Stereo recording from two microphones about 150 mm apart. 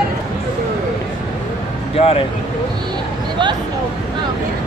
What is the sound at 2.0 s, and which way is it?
Speech, 40° left (ahead or behind).